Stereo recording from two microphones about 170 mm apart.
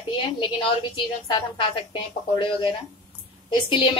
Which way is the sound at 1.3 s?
30° left (ahead or behind).